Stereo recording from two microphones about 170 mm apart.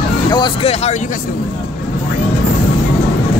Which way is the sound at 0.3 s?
25° left (ahead or behind).